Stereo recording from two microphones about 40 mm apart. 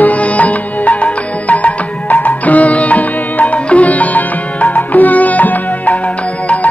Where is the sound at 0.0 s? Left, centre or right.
Left.